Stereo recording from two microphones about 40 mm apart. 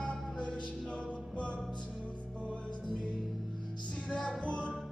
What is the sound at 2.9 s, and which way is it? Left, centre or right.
Music, left.